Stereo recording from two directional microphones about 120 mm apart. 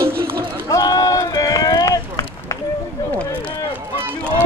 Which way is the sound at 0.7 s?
30° left (ahead or behind).